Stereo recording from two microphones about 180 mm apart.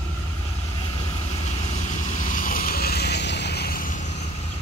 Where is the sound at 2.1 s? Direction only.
45° left (ahead or behind).